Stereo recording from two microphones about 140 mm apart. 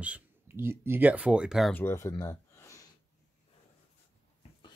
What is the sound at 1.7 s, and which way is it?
Speech, 15° left (ahead or behind).